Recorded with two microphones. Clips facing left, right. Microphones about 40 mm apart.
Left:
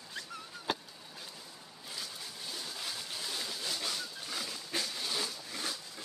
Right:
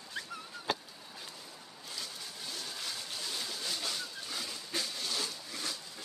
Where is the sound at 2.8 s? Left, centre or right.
Centre.